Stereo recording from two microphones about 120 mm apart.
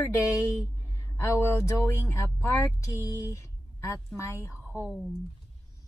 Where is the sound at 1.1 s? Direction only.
20° left (ahead or behind).